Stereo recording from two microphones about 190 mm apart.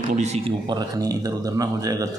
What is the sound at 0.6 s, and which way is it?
A man's voice, 20° right (ahead or behind).